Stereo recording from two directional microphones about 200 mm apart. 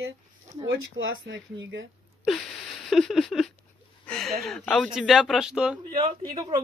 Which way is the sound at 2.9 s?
Centre (ahead or behind).